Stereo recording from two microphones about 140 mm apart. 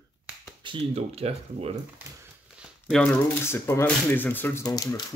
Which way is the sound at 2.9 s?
10° left (ahead or behind).